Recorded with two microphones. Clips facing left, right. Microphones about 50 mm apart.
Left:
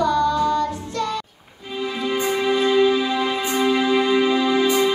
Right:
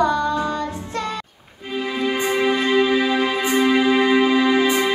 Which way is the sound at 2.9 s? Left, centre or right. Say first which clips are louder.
Right 2 dB; right.